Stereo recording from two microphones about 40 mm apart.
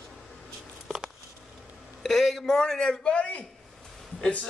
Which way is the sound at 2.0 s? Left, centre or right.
Centre.